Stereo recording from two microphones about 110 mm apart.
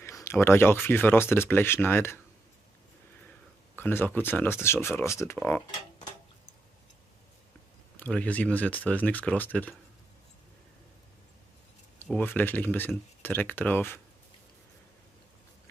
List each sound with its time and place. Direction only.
0.0 s speech: 25° left (ahead or behind)
3.7 s speech: 20° left (ahead or behind)
8.0 s speech: 15° left (ahead or behind)
12.1 s speech: 15° left (ahead or behind)